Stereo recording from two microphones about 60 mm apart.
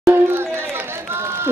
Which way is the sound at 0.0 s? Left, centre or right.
Right.